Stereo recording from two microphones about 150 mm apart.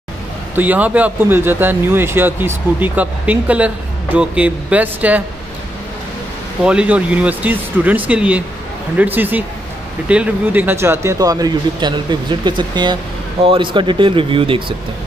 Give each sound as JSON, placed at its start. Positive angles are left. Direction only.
{"t": 0.6, "sound": "speech", "side_deg": -10}
{"t": 6.6, "sound": "speech", "side_deg": -5}